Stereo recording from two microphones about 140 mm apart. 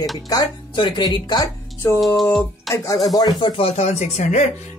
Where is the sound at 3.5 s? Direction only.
50° left (ahead or behind).